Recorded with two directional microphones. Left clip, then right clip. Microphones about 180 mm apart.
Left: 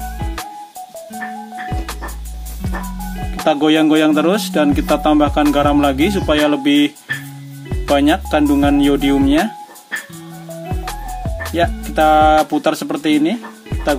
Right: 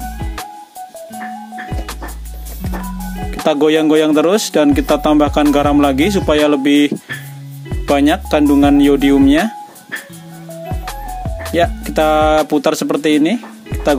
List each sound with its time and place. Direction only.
3.4 s a man's voice: 40° right (ahead or behind)
7.9 s a man's voice: 40° right (ahead or behind)
10.7 s music: centre (ahead or behind)
11.5 s music: 40° right (ahead or behind)
12.4 s a man's voice: 40° right (ahead or behind)